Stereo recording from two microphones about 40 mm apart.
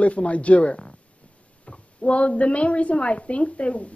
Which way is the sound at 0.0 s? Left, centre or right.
Left.